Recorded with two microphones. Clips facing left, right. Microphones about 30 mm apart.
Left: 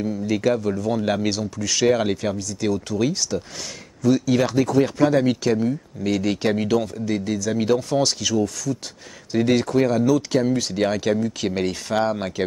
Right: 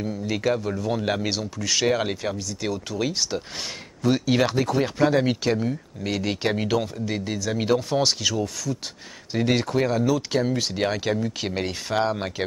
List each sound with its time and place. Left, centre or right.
0.0 s speech: centre
3.2 s speech: right
4.4 s speech: centre